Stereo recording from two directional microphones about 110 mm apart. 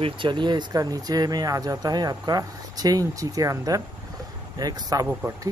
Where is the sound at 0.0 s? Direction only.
45° right (ahead or behind).